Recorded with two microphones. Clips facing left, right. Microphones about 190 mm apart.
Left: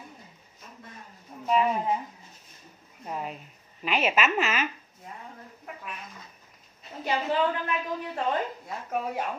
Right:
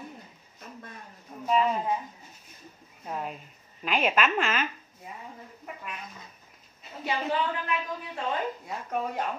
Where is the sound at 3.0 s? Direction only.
Centre (ahead or behind).